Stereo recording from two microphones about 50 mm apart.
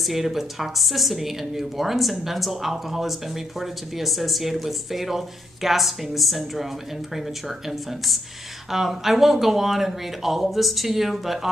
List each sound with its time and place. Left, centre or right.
0.0 s speech: centre